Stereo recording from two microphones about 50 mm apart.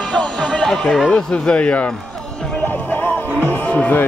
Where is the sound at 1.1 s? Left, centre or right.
Left.